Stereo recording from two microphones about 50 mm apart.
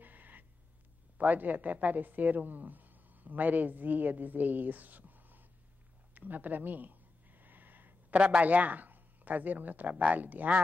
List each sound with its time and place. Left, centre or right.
0.0 s gasp: right
1.1 s speech: right
6.1 s a sound: right
8.1 s speech: right
8.5 s speech: right